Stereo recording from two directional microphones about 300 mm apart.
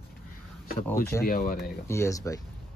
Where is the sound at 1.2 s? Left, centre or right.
Left.